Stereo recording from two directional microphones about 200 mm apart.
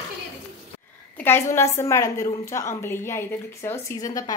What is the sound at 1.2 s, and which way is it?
A woman's voice, 10° left (ahead or behind).